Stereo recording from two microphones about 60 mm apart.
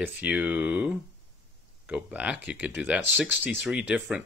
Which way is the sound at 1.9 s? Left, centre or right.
Right.